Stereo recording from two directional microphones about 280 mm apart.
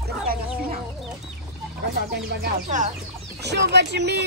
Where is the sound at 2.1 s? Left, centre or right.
Right.